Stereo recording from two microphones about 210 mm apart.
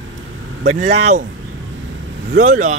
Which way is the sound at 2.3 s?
35° right (ahead or behind).